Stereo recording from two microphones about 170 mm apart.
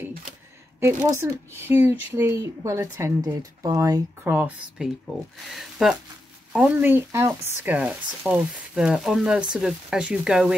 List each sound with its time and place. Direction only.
1.2 s speech: 15° right (ahead or behind)